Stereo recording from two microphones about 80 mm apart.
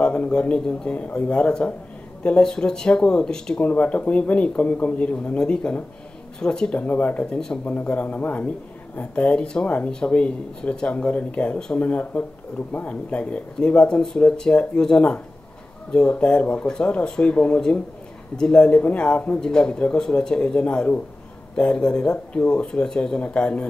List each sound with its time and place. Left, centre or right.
0.0 s speech: centre